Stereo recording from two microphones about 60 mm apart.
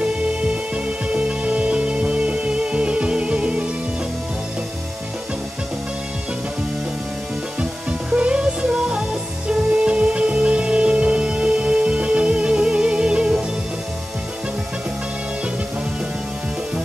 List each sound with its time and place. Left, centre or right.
0.0 s music: centre
8.1 s music: centre